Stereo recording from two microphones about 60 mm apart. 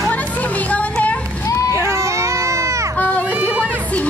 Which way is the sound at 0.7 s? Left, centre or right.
Left.